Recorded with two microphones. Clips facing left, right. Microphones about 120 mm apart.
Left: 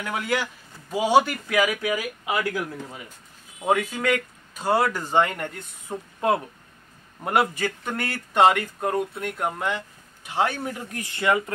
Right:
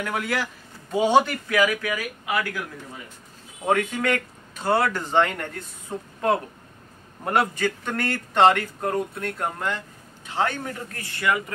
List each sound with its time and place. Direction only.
0.0 s a man's voice: centre (ahead or behind); by 2.4 s 15° left (ahead or behind)
3.6 s speech: 5° left (ahead or behind); by 11.5 s 25° left (ahead or behind)